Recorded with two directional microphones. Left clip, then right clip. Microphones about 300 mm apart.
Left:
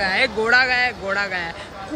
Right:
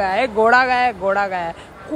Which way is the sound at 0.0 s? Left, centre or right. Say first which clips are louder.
Right 3 dB; centre.